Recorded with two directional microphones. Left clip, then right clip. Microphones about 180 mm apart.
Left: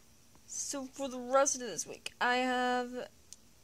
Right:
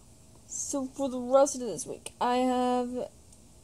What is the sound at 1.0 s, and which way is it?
A woman's voice, 45° left (ahead or behind).